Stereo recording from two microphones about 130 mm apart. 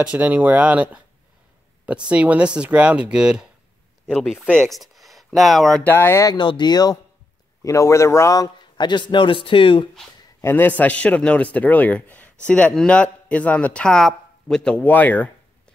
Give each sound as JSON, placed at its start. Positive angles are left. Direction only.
{"t": 0.0, "sound": "speech", "side_deg": -10}
{"t": 2.0, "sound": "speech", "side_deg": -10}
{"t": 4.5, "sound": "speech", "side_deg": 5}
{"t": 5.9, "sound": "speech", "side_deg": 20}
{"t": 6.3, "sound": "a man's voice", "side_deg": 35}
{"t": 10.4, "sound": "speech", "side_deg": 15}